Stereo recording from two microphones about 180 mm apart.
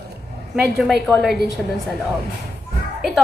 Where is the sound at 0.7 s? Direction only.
Centre (ahead or behind).